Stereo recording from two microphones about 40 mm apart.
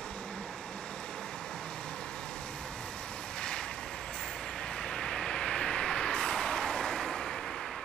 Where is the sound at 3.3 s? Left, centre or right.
Left.